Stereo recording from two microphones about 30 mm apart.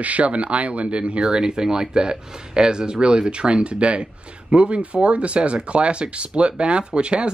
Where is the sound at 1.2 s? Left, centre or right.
Right.